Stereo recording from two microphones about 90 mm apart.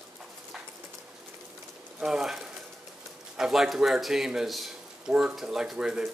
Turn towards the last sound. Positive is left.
turn(degrees=-10)  # may be behind; listen again after turning